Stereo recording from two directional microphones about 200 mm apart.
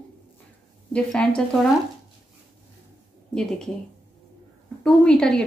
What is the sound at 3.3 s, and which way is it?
Speech, centre (ahead or behind).